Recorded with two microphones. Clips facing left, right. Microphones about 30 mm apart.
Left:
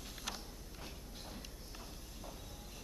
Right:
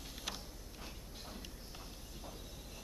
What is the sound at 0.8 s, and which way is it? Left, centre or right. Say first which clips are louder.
Train: even; centre.